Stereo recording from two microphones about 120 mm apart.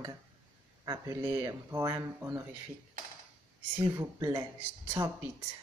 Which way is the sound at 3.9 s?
30° right (ahead or behind).